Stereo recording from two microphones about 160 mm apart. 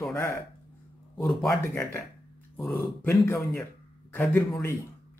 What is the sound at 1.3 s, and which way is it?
Speech, centre (ahead or behind).